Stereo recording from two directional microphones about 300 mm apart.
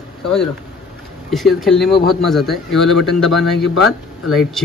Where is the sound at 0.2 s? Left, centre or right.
Centre.